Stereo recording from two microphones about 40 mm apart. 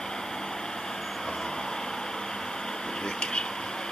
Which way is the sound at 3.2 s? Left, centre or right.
Left.